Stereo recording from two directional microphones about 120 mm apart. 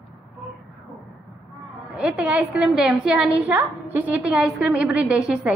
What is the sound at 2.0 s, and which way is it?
A woman's voice, 10° right (ahead or behind).